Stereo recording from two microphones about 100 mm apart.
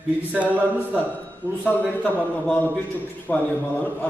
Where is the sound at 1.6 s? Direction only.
15° left (ahead or behind).